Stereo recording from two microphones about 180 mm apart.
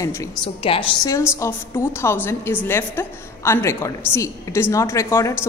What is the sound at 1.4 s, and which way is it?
A woman's voice, 15° left (ahead or behind).